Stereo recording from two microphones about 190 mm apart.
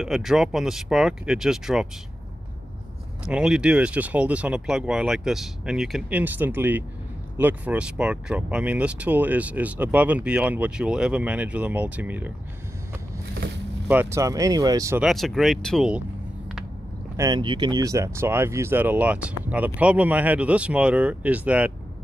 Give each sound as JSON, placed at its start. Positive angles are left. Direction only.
{"t": 0.0, "sound": "speech", "side_deg": 0}
{"t": 3.3, "sound": "speech", "side_deg": -5}
{"t": 13.8, "sound": "speech", "side_deg": -10}
{"t": 15.0, "sound": "speech", "side_deg": 0}
{"t": 17.2, "sound": "speech", "side_deg": -25}